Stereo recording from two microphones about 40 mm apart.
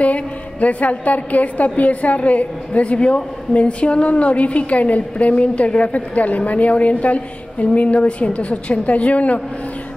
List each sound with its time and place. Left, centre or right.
0.0 s a woman's voice: left